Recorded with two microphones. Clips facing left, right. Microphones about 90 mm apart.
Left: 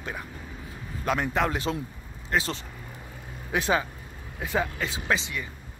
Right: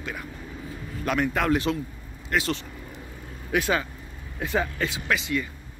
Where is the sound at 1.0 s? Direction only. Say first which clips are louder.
Right 1 dB; 20° left (ahead or behind).